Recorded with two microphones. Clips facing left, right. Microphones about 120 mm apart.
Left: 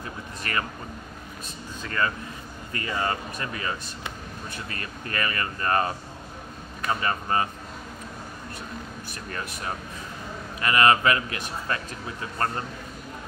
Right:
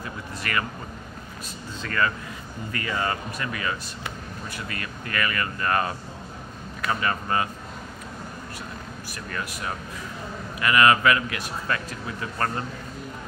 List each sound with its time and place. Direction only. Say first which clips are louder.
0.4 s speech: right 1 dB; 30° left (ahead or behind)
1.8 s speech: right 2 dB; 25° left (ahead or behind)
10.6 s speech: right 1 dB; 30° left (ahead or behind)